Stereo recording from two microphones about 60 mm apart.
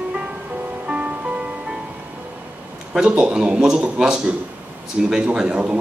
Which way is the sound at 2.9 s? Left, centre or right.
Centre.